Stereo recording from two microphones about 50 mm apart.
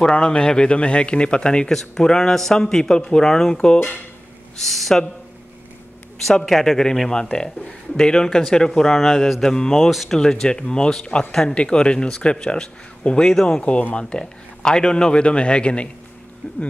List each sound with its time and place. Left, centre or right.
0.0 s a man's voice: centre
1.7 s speech: centre
4.6 s speech: centre
6.4 s speech: centre
10.1 s a man's voice: centre